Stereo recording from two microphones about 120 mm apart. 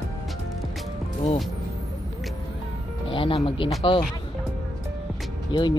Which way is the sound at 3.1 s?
50° left (ahead or behind).